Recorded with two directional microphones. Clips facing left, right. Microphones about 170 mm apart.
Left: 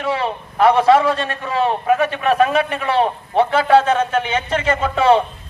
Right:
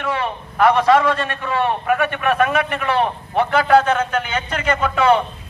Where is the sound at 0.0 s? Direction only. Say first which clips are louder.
Left 2 dB; 30° left (ahead or behind).